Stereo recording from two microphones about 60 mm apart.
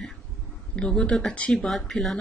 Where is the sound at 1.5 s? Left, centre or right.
Centre.